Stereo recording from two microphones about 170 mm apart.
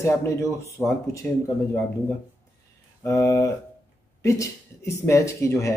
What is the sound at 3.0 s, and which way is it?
Speech, 15° left (ahead or behind).